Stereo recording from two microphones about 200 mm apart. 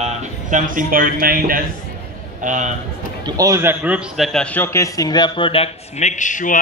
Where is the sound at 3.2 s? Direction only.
15° right (ahead or behind).